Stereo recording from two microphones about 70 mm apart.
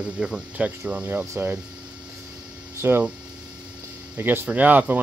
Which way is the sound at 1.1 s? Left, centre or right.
Right.